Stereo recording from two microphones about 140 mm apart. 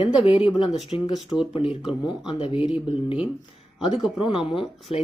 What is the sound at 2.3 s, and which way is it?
Speech, 40° left (ahead or behind).